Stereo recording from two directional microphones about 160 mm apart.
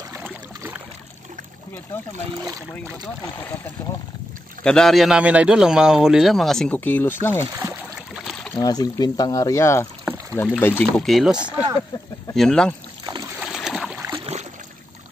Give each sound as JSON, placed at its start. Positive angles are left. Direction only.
{"t": 4.6, "sound": "a man's voice", "side_deg": 5}
{"t": 8.2, "sound": "rowboat", "side_deg": 0}
{"t": 8.5, "sound": "a man's voice", "side_deg": 25}
{"t": 13.0, "sound": "boat", "side_deg": -25}
{"t": 13.4, "sound": "boat", "side_deg": 0}
{"t": 14.1, "sound": "boat", "side_deg": -35}